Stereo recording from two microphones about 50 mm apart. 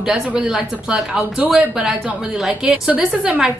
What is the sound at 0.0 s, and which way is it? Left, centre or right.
Speech, centre.